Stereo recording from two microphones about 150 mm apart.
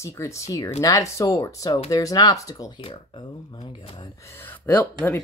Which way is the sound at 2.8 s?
35° left (ahead or behind).